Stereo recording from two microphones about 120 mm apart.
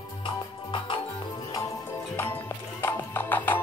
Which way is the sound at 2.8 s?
20° left (ahead or behind).